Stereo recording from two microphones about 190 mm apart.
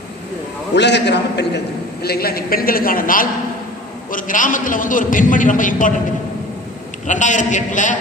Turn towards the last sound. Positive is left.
turn(degrees=40)  # may be behind; listen again after turning